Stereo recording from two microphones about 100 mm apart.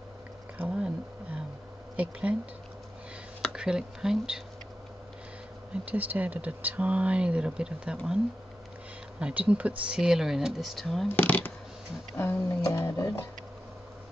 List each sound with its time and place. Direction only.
0.7 s a sound: 10° right (ahead or behind)
2.0 s speech: 15° right (ahead or behind)
3.5 s speech: 5° right (ahead or behind)
5.9 s speech: 15° right (ahead or behind)
9.2 s speech: 10° right (ahead or behind)
11.1 s speech: 15° left (ahead or behind)